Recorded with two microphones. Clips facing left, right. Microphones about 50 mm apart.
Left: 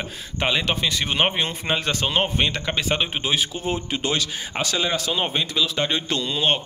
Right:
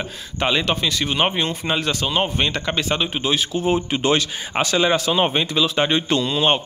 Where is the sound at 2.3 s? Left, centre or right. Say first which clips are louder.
Right 2 dB; centre.